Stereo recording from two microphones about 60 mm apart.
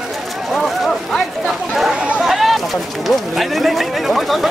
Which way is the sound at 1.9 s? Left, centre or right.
Centre.